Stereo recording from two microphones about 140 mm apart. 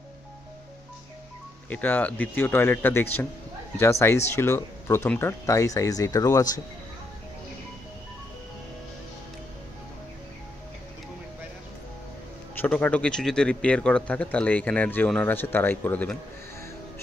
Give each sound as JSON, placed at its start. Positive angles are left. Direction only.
{"t": 1.7, "sound": "a man's voice", "side_deg": 10}
{"t": 12.5, "sound": "a man's voice", "side_deg": 10}